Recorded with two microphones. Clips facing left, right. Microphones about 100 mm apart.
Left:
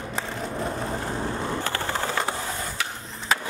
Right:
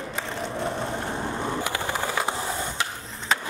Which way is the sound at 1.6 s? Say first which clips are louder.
Even; 15° right (ahead or behind).